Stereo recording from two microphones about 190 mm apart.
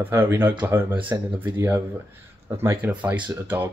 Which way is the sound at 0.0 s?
10° right (ahead or behind).